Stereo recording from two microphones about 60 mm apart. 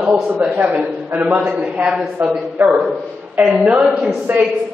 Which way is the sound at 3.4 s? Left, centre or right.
Right.